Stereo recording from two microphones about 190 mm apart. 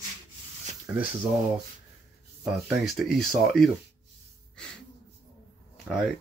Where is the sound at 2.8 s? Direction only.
Centre (ahead or behind).